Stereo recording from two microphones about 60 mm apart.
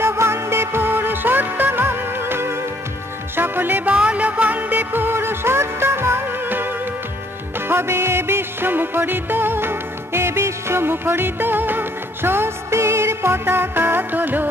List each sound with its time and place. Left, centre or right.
0.0 s music: right